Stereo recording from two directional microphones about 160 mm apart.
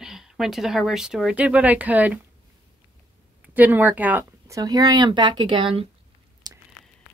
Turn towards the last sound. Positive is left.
turn(degrees=-25)  # may be behind; listen again after turning